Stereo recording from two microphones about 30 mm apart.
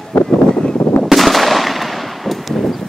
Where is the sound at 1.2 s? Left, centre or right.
Centre.